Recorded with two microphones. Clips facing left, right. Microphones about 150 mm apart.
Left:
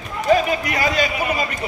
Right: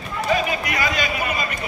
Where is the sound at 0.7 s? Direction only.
35° left (ahead or behind).